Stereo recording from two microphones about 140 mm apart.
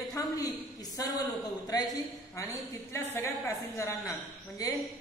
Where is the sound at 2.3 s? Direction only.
20° left (ahead or behind).